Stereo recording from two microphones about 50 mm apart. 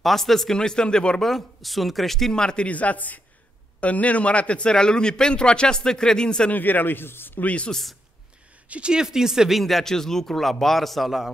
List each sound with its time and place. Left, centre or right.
0.0 s speech: centre
1.3 s speech: centre
6.5 s a man's voice: left
7.4 s speech: left
8.6 s speech: right
8.9 s speech: centre
9.6 s a man's voice: centre